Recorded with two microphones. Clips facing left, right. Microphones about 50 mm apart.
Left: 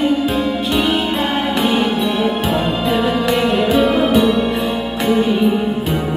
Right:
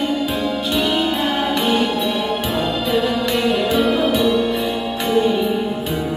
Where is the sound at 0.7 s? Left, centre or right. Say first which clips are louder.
Left 1 dB; centre.